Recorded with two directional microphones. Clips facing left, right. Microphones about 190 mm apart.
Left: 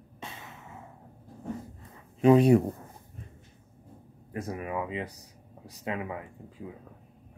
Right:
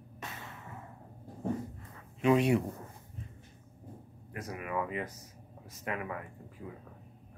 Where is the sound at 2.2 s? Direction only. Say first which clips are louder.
Left 7 dB; 35° left (ahead or behind).